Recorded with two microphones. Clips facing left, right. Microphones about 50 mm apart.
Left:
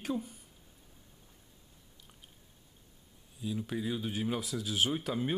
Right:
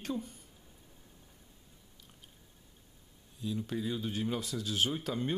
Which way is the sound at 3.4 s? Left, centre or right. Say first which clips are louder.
Even; centre.